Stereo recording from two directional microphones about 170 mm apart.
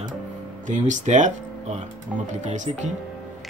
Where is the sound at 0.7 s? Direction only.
45° right (ahead or behind).